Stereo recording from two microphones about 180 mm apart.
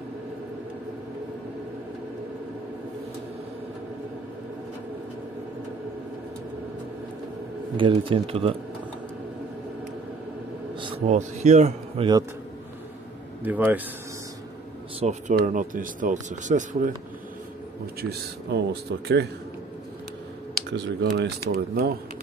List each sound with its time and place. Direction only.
7.7 s speech: 30° right (ahead or behind)
11.1 s speech: 40° right (ahead or behind)
13.4 s a man's voice: 10° right (ahead or behind)
15.0 s speech: 40° right (ahead or behind)
18.5 s speech: 65° right (ahead or behind)
20.7 s speech: 70° right (ahead or behind)